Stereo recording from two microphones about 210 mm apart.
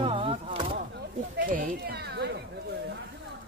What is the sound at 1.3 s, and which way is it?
Speech, 45° right (ahead or behind).